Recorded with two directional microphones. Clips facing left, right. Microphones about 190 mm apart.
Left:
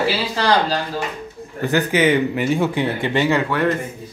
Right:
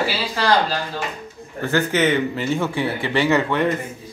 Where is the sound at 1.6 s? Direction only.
15° left (ahead or behind).